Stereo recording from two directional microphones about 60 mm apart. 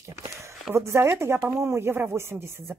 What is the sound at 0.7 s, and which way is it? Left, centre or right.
Speech, right.